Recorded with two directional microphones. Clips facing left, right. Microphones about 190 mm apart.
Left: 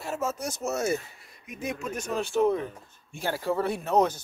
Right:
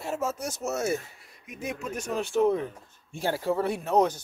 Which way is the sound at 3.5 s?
15° right (ahead or behind).